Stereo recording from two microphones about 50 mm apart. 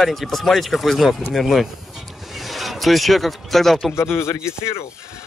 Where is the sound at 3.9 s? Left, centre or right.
Left.